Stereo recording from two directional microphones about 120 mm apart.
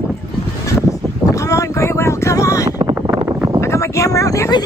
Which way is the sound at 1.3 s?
25° left (ahead or behind).